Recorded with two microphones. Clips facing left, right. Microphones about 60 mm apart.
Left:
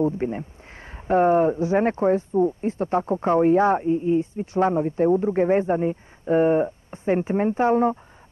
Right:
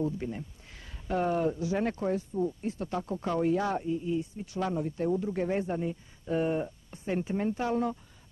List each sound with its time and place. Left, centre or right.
0.0 s speech: left